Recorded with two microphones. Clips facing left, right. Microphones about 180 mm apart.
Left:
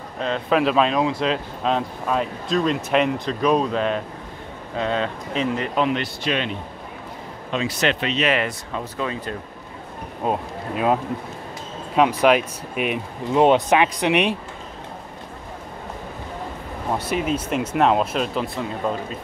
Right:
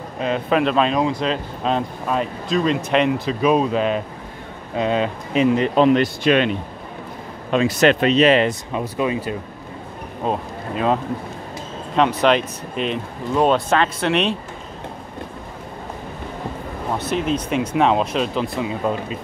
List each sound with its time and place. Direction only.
0.2 s speech: 5° right (ahead or behind)
6.2 s speech: 60° right (ahead or behind)
7.5 s speech: 50° right (ahead or behind); by 8.5 s 30° right (ahead or behind)
8.7 s speech: 15° right (ahead or behind)
10.2 s speech: 5° left (ahead or behind)
17.0 s speech: 10° left (ahead or behind)